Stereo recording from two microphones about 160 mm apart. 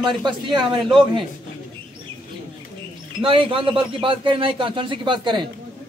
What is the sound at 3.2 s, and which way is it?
Speech, 35° right (ahead or behind).